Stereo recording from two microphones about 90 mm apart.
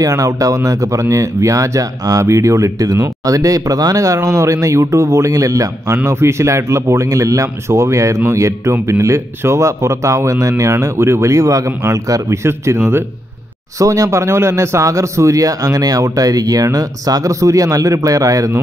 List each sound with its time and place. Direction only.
0.0 s speech: 35° right (ahead or behind)